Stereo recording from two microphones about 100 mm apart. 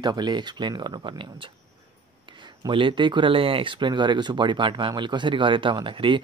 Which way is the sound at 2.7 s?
55° right (ahead or behind).